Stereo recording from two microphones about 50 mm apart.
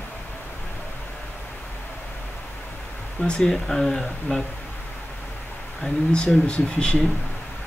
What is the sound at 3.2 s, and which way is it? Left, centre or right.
Speech, centre.